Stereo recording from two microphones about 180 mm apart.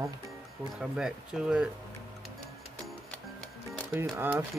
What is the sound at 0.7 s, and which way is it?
Speech, 5° right (ahead or behind).